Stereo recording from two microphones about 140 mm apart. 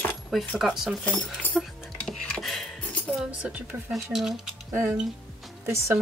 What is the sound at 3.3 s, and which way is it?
Speech, 10° right (ahead or behind).